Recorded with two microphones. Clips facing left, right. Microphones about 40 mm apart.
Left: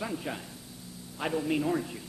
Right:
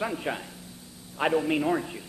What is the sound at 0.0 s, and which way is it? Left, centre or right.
A man's voice, right.